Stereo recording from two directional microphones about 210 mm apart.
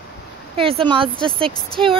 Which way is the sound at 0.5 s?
25° right (ahead or behind).